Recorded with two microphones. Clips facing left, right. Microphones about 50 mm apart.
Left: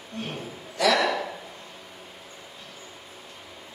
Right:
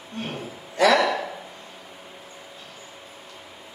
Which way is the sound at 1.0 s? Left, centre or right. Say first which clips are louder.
Right 2 dB; right.